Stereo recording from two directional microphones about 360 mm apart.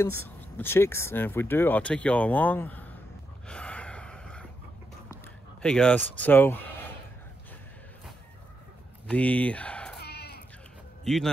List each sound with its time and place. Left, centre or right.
0.0 s speech: centre
3.4 s gasp: centre
5.6 s speech: centre
9.0 s speech: centre
9.9 s goat: left
11.1 s speech: centre